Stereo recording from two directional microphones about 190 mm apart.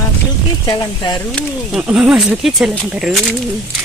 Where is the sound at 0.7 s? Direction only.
20° left (ahead or behind).